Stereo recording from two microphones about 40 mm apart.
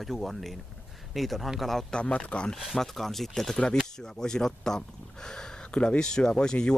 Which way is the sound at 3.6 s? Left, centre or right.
Centre.